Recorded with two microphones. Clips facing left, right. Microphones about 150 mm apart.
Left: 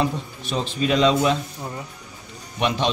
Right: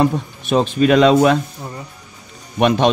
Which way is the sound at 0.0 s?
55° right (ahead or behind).